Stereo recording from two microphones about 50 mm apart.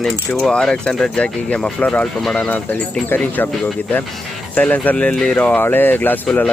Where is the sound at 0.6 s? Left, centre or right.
Centre.